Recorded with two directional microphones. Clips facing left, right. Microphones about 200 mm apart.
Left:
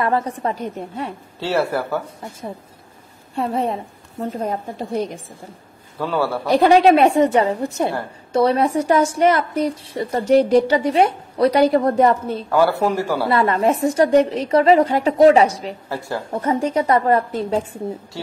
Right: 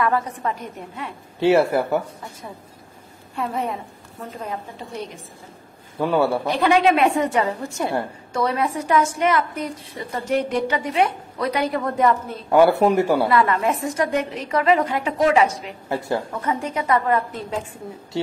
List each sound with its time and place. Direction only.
0.0 s a woman's voice: 30° left (ahead or behind)
1.4 s speech: 20° right (ahead or behind)
3.3 s a woman's voice: 30° left (ahead or behind)
5.9 s speech: 20° right (ahead or behind)
6.5 s a woman's voice: 40° left (ahead or behind)
12.4 s speech: 20° right (ahead or behind)
13.3 s a woman's voice: 35° left (ahead or behind)
15.9 s speech: 20° right (ahead or behind)
16.3 s a woman's voice: 35° left (ahead or behind)
18.1 s speech: 20° right (ahead or behind)